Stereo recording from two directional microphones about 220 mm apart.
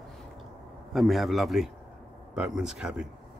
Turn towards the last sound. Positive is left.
turn(degrees=-5)  # may be behind; listen again after turning